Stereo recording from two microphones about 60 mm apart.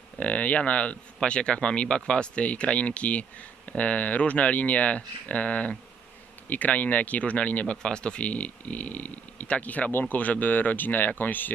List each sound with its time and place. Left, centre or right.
0.2 s speech: left